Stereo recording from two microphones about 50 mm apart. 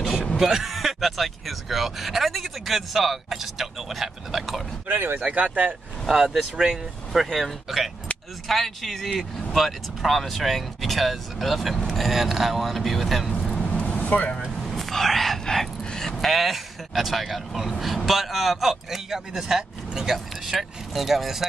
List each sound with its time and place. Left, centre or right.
0.4 s speech: centre
4.8 s speech: right
5.2 s speech: right
6.5 s speech: centre
7.2 s speech: centre
13.5 s vehicle: centre
13.7 s vehicle: left
14.7 s whispering: centre
15.4 s speech: centre